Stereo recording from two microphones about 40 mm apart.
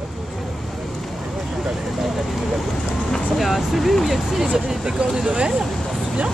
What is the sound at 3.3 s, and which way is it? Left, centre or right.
Speech, centre.